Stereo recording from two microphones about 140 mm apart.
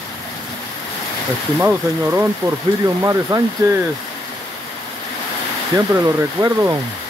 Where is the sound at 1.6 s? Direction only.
15° right (ahead or behind).